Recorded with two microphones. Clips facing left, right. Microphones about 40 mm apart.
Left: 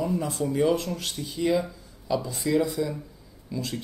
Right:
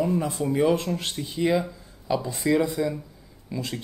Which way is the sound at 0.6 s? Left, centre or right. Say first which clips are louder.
Right 2 dB; right.